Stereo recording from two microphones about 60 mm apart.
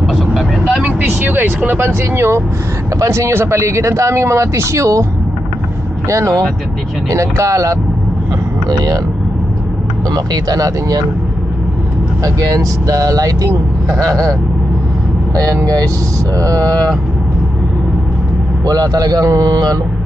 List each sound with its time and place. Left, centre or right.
0.1 s vehicle: centre
0.7 s vehicle: right
2.1 s speech: right
6.0 s speech: right
8.6 s speech: right
10.1 s speech: right
12.2 s speech: right
15.3 s speech: right
16.3 s speech: right
18.7 s speech: right